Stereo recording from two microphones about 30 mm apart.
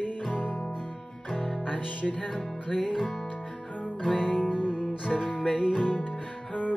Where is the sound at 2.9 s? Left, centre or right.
Centre.